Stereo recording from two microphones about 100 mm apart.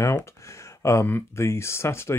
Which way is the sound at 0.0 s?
30° left (ahead or behind).